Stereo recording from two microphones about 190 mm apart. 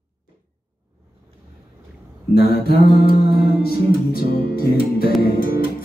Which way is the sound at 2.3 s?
55° left (ahead or behind).